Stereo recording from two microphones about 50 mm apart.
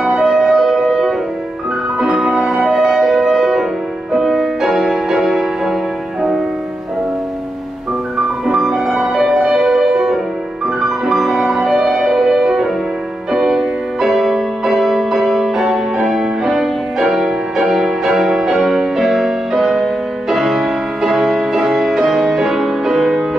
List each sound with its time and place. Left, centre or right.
0.2 s music: centre
2.0 s music: centre
8.5 s music: centre
8.8 s music: centre